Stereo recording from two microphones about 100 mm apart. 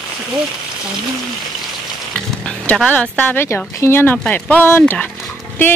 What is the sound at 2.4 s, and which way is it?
Speech, 10° left (ahead or behind).